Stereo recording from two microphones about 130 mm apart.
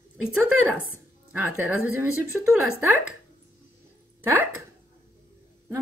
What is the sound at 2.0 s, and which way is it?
Speech, 15° right (ahead or behind).